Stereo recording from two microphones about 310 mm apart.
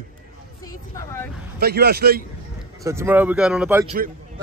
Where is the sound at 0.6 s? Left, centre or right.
Centre.